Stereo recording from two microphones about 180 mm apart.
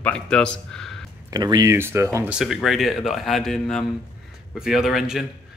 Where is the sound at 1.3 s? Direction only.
20° right (ahead or behind).